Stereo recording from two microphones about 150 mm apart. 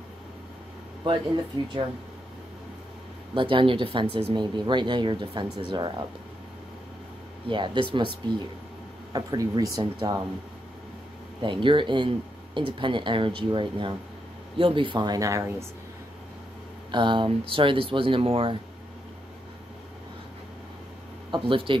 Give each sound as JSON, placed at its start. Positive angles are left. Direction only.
{"t": 1.0, "sound": "speech", "side_deg": -30}
{"t": 3.3, "sound": "speech", "side_deg": -35}
{"t": 7.4, "sound": "speech", "side_deg": -30}
{"t": 11.4, "sound": "speech", "side_deg": -35}
{"t": 16.9, "sound": "speech", "side_deg": -35}
{"t": 21.3, "sound": "speech", "side_deg": -35}